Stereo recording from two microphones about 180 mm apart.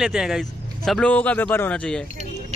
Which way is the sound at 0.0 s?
5° right (ahead or behind).